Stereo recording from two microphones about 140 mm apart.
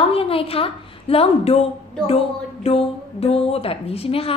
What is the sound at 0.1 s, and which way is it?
A woman's voice, 40° left (ahead or behind).